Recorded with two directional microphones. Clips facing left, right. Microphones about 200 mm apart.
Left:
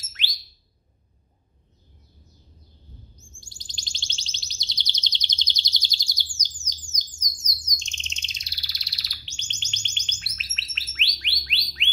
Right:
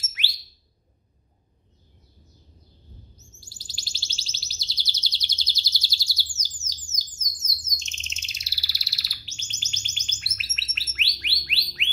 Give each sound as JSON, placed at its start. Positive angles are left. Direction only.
{"t": 0.1, "sound": "alarm", "side_deg": -10}
{"t": 3.3, "sound": "chirp", "side_deg": -5}
{"t": 6.9, "sound": "bird", "side_deg": -5}